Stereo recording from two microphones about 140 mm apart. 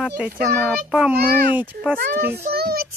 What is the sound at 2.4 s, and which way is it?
Child singing, 90° right.